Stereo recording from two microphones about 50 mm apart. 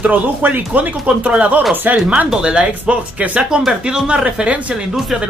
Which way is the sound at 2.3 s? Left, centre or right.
Centre.